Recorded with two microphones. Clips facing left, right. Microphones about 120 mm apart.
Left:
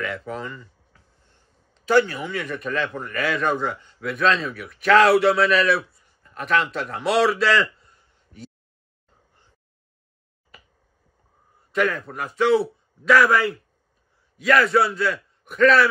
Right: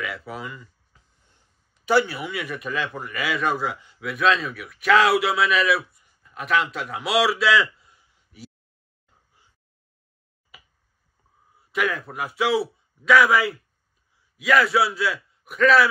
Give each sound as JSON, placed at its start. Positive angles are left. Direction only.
{"t": 0.0, "sound": "speech", "side_deg": -5}
{"t": 0.9, "sound": "a sound", "side_deg": -20}
{"t": 1.7, "sound": "a man's voice", "side_deg": -10}
{"t": 10.5, "sound": "finger snapping", "side_deg": -5}
{"t": 11.7, "sound": "a man's voice", "side_deg": -5}